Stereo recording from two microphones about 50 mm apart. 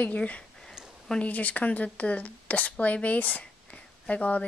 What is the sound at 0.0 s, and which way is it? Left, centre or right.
Speech, left.